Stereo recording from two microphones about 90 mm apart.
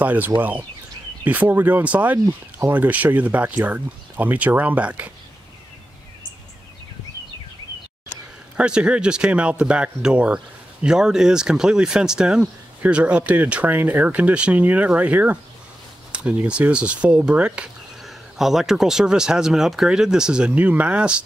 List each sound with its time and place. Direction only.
0.0 s speech: 20° right (ahead or behind)
8.5 s speech: 10° right (ahead or behind)